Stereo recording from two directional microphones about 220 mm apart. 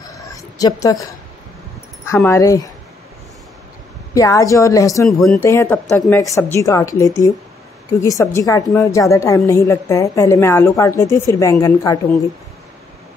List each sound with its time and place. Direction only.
0.0 s a sound: 15° left (ahead or behind)
0.6 s a woman's voice: 15° left (ahead or behind)
2.0 s a woman's voice: 10° left (ahead or behind)
4.1 s a woman's voice: 15° left (ahead or behind)
5.0 s speech: centre (ahead or behind)
5.4 s a woman's voice: 10° left (ahead or behind)